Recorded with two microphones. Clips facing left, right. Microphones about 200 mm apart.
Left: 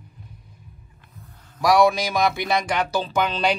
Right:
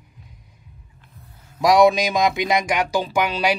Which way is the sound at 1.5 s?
20° right (ahead or behind).